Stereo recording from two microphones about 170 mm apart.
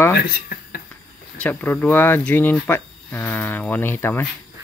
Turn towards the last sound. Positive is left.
turn(degrees=15)  # may be behind; listen again after turning